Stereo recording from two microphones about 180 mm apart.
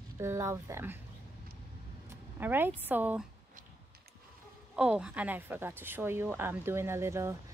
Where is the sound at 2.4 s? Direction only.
10° right (ahead or behind).